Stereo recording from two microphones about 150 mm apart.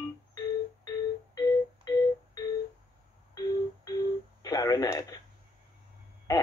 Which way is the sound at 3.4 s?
25° left (ahead or behind).